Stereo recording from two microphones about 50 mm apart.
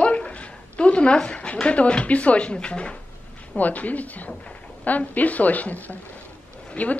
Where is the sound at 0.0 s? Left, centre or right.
Left.